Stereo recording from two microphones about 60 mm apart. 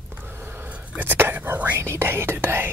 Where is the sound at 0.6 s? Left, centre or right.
Right.